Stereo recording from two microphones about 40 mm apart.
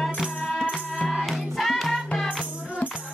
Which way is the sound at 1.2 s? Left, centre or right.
Centre.